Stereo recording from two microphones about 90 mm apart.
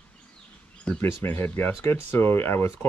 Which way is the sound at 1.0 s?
25° left (ahead or behind).